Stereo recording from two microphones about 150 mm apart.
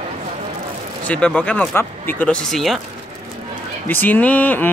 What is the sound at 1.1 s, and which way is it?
Speech, 10° left (ahead or behind).